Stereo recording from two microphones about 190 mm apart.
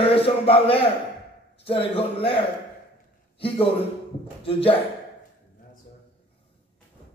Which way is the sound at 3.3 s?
30° left (ahead or behind).